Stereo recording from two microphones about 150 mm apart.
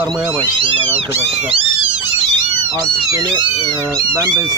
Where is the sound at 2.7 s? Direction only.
25° right (ahead or behind).